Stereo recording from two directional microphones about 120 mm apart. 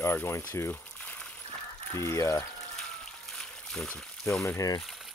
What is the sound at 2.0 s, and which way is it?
Speech, 25° left (ahead or behind).